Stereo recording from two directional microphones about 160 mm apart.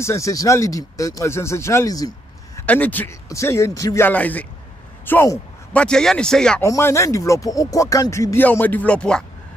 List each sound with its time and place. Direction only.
0.0 s speech: 20° left (ahead or behind)
2.6 s speech: 10° left (ahead or behind)
5.0 s a sound: 15° left (ahead or behind)
5.8 s speech: 5° left (ahead or behind)
6.6 s speech: 20° left (ahead or behind)